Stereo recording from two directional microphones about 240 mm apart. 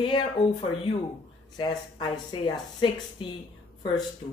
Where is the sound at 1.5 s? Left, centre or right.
Centre.